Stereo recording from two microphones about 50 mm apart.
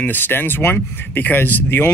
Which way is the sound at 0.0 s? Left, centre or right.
Left.